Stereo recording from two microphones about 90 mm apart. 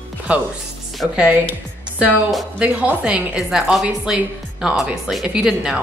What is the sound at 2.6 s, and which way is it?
Speech, 15° right (ahead or behind).